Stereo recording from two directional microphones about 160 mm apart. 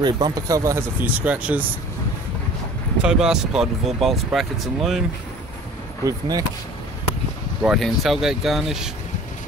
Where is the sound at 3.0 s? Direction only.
5° right (ahead or behind).